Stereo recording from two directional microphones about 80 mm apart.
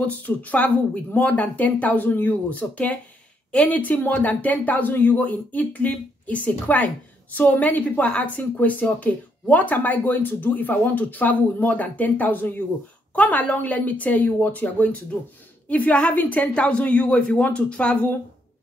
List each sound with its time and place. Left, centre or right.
0.0 s a woman's voice: centre